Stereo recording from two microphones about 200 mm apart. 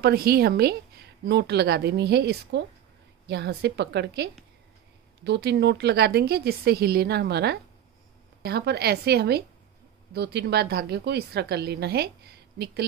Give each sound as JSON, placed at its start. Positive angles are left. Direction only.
{"t": 0.0, "sound": "a woman's voice", "side_deg": -50}